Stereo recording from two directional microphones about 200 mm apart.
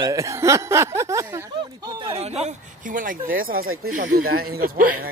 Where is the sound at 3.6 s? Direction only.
90° right.